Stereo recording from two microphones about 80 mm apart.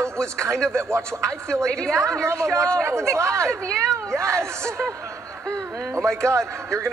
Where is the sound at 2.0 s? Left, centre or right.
Right.